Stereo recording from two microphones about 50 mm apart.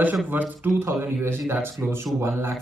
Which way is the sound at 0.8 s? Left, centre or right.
Right.